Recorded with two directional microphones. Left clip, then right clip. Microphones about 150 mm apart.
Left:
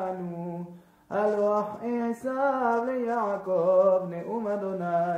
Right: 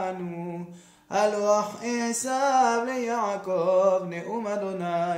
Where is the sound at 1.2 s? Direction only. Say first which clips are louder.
Right 2 dB; 5° right (ahead or behind).